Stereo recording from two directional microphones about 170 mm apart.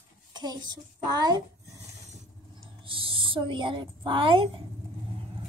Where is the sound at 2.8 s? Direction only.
30° right (ahead or behind).